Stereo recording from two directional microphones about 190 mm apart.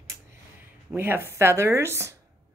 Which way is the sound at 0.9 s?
10° right (ahead or behind).